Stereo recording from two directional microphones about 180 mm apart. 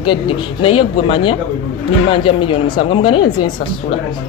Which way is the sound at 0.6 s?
30° left (ahead or behind).